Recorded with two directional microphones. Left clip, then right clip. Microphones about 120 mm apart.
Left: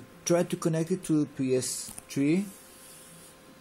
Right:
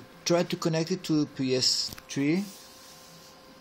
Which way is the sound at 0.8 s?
30° right (ahead or behind).